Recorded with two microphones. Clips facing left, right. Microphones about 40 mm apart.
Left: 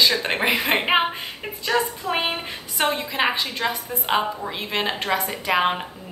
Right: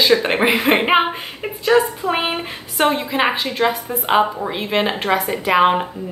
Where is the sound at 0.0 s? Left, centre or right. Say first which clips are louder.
Right 5 dB; centre.